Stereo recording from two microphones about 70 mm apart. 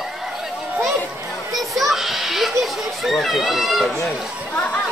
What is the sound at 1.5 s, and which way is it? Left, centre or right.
Children playing, centre.